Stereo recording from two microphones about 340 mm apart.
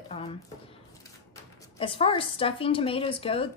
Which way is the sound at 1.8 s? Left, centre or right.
Centre.